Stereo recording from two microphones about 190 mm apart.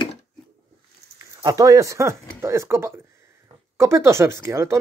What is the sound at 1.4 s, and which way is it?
Speech, 20° right (ahead or behind).